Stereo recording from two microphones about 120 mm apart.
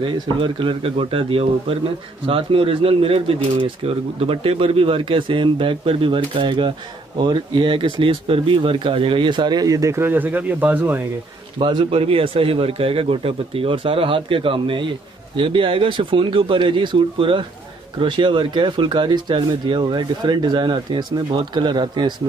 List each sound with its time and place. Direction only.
0.0 s speech: 45° right (ahead or behind); by 11.1 s 15° right (ahead or behind)
11.5 s speech: 40° right (ahead or behind)
11.9 s speech: 50° right (ahead or behind)